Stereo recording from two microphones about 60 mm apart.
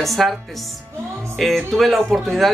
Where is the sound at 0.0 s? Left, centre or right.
Centre.